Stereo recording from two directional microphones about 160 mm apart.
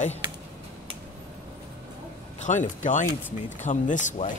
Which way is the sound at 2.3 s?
50° left (ahead or behind).